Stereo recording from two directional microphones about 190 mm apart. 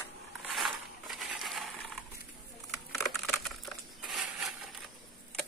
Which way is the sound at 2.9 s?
5° left (ahead or behind).